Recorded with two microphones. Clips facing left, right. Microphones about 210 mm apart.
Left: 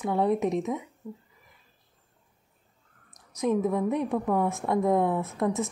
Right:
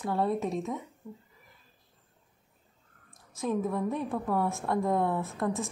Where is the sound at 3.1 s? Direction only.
20° left (ahead or behind).